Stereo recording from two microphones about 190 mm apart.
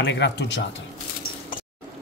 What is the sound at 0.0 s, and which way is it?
Speech, 65° left (ahead or behind).